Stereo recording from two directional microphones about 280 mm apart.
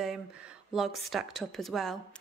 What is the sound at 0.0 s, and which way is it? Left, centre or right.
A woman's voice, centre.